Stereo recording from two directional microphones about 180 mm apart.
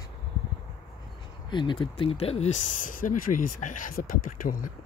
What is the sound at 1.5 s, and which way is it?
Speech, 25° left (ahead or behind).